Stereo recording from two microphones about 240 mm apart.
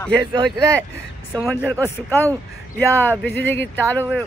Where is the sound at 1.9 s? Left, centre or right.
Centre.